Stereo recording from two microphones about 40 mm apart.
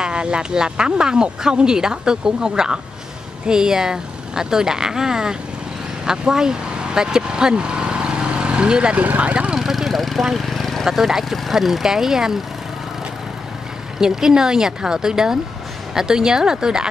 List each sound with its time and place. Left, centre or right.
0.0 s speech: right
8.9 s speech: right
9.3 s speech: right
9.6 s vehicle: centre
10.9 s speech: centre
13.9 s speech: centre